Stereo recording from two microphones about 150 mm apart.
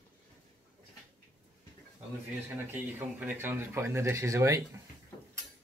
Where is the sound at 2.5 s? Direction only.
10° right (ahead or behind).